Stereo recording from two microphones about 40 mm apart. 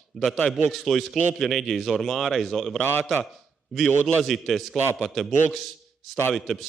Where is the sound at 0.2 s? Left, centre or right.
Centre.